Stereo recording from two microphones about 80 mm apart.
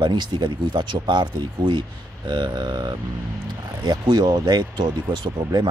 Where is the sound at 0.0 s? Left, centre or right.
Right.